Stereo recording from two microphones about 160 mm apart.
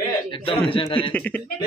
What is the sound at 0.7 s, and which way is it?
Speech, 35° left (ahead or behind).